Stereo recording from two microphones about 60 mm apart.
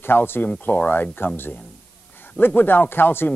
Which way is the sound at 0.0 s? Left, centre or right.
Left.